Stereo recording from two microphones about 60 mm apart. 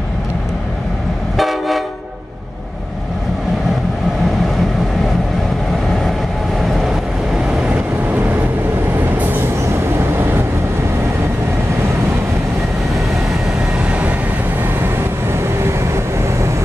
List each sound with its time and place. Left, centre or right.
1.3 s vehicle: centre
13.8 s vehicle: right
15.6 s vehicle: right